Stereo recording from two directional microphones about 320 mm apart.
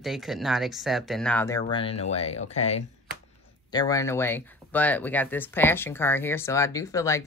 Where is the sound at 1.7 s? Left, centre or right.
Centre.